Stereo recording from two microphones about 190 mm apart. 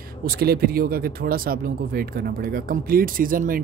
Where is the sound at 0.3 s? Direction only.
55° right (ahead or behind).